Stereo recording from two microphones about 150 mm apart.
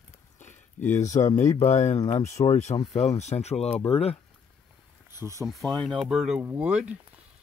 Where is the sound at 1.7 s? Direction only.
50° left (ahead or behind).